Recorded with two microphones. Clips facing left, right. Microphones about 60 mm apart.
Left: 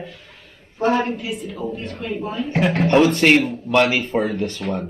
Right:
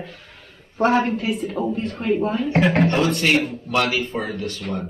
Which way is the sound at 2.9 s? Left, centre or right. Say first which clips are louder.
Left 5 dB; left.